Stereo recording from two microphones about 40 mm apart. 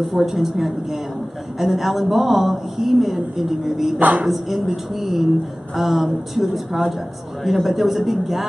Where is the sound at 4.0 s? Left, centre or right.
Right.